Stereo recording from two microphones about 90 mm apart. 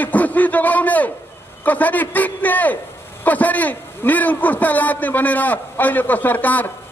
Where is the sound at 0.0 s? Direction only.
20° left (ahead or behind).